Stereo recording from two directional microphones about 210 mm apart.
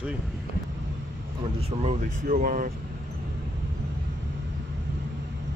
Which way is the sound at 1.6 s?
30° right (ahead or behind).